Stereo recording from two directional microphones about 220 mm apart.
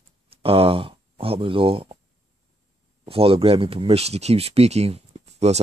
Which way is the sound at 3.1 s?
25° right (ahead or behind).